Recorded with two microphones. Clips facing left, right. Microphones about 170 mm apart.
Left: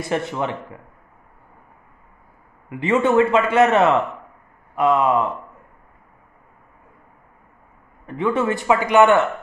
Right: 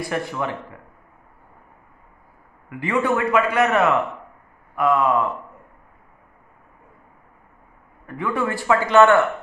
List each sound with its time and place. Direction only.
0.0 s a man's voice: 25° left (ahead or behind)
2.7 s a man's voice: 25° left (ahead or behind)
8.1 s a man's voice: 20° left (ahead or behind)